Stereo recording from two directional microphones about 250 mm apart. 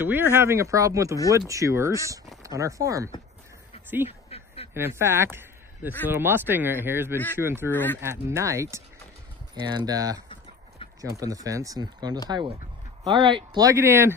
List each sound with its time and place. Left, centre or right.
0.0 s speech: centre
4.3 s a sound: left
4.7 s speech: centre
7.7 s speech: centre
8.0 s speech: centre